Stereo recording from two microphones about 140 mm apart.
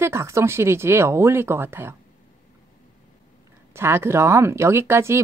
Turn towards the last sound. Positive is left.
turn(degrees=-20)  # may be behind; listen again after turning